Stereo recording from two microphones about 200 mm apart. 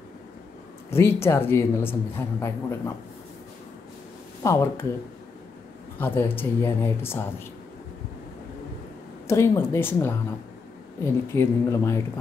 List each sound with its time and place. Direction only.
0.8 s speech: 10° left (ahead or behind)
4.4 s speech: 15° left (ahead or behind)
5.9 s speech: 10° left (ahead or behind)
9.3 s speech: 15° left (ahead or behind)